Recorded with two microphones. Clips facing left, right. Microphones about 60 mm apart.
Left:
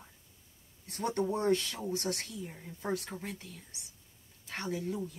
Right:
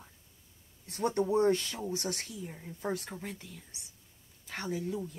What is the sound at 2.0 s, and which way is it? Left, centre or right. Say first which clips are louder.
Speech: left 1 dB; left.